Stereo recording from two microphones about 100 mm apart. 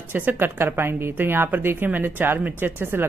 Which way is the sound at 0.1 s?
20° right (ahead or behind).